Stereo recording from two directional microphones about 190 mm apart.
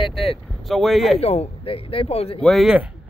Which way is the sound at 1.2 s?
35° left (ahead or behind).